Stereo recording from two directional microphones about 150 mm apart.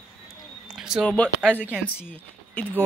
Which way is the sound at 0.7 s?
5° right (ahead or behind).